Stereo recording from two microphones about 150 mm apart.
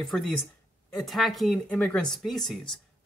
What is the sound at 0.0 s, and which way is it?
Speech, centre (ahead or behind).